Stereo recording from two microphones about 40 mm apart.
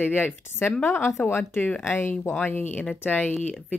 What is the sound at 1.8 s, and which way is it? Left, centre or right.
Speech, left.